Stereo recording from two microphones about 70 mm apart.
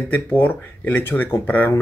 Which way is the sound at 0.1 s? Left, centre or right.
Left.